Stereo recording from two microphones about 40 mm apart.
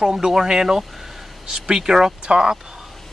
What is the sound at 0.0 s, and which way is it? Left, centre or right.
Speech, centre.